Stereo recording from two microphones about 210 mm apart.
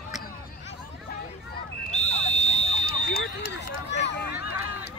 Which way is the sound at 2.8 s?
45° left (ahead or behind).